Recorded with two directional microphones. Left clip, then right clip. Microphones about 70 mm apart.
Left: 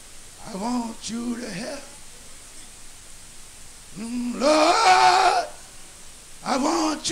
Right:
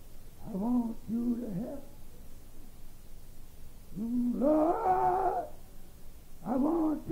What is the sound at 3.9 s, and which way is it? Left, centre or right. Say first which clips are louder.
Goat: left 4 dB; centre.